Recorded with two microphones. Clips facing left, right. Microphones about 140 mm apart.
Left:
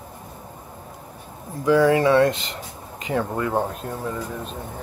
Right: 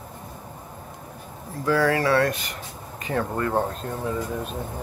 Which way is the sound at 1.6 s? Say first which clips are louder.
Left 5 dB; 20° left (ahead or behind).